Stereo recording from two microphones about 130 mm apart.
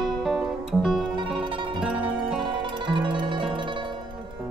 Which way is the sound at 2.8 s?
40° right (ahead or behind).